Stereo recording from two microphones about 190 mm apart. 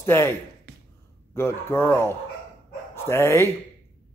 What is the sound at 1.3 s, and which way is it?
Speech, 15° left (ahead or behind).